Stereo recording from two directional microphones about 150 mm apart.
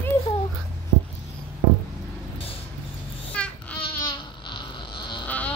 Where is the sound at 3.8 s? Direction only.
35° left (ahead or behind).